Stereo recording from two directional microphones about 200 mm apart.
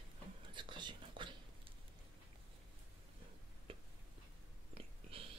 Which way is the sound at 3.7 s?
25° right (ahead or behind).